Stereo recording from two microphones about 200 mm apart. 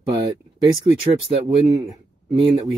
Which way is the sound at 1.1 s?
30° right (ahead or behind).